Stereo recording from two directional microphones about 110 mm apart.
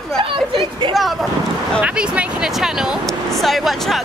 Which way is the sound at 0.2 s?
55° right (ahead or behind).